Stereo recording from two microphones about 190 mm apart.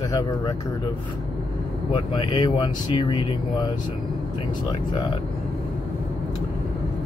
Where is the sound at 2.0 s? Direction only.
20° left (ahead or behind).